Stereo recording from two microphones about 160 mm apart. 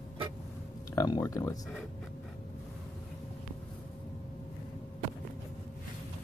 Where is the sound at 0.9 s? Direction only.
20° left (ahead or behind).